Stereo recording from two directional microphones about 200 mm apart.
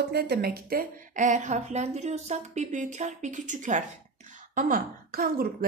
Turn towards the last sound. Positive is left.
turn(degrees=-45)  # may be behind; listen again after turning